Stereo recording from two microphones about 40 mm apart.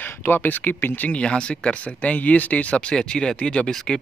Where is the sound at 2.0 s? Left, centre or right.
Left.